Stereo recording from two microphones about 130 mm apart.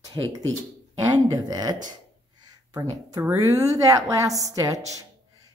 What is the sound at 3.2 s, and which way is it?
A woman's voice, 20° right (ahead or behind).